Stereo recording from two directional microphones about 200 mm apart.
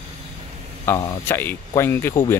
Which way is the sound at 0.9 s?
15° left (ahead or behind).